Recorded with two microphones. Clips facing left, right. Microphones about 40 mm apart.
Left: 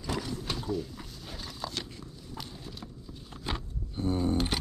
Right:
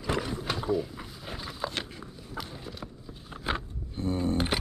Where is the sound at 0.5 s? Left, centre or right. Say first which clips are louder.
Right 6 dB; centre.